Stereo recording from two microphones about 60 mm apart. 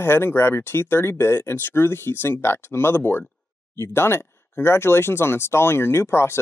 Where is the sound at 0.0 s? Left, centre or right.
Left.